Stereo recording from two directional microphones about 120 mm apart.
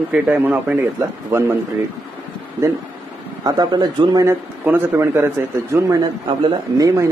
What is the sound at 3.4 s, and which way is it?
Speech, 35° right (ahead or behind).